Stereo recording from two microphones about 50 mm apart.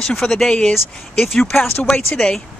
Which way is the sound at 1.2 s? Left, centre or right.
Centre.